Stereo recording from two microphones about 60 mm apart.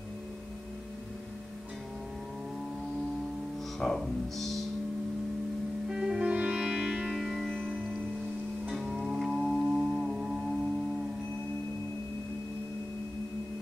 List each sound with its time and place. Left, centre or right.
3.8 s speech: centre
5.9 s music: centre
7.2 s music: centre
9.4 s music: centre